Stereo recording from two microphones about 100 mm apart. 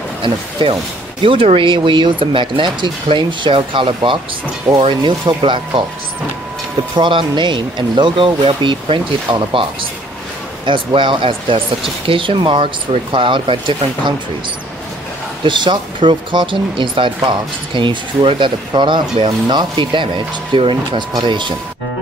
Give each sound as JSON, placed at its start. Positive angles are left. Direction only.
{"t": 0.2, "sound": "speech", "side_deg": -55}
{"t": 7.0, "sound": "speech", "side_deg": -55}
{"t": 15.4, "sound": "speech", "side_deg": -50}